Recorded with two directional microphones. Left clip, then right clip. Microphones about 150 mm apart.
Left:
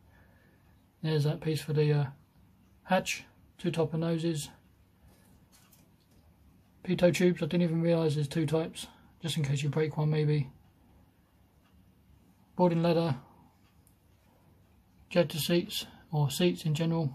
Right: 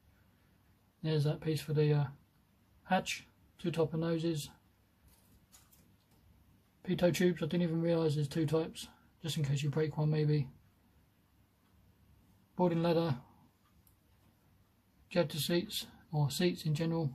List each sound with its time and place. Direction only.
1.0 s speech: 15° left (ahead or behind)
6.8 s speech: 15° left (ahead or behind)
12.5 s speech: 10° left (ahead or behind)
15.0 s speech: 15° left (ahead or behind)